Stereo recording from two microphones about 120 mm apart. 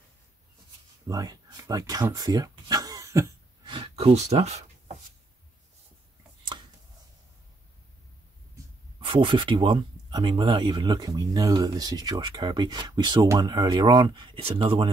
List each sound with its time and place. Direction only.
1.0 s speech: 30° right (ahead or behind)
2.1 s throat clearing: 30° right (ahead or behind)
3.6 s a sound: 50° right (ahead or behind); by 4.9 s 65° right (ahead or behind)
9.0 s speech: 45° right (ahead or behind)